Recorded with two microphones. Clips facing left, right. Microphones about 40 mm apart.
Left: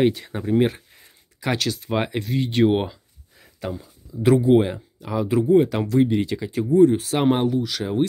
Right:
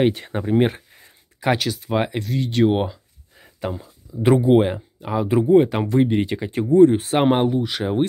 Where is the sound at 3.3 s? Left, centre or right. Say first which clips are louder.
Right 2 dB; right.